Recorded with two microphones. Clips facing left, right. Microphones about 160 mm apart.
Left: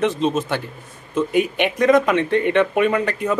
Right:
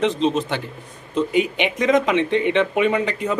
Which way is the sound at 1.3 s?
50° left (ahead or behind).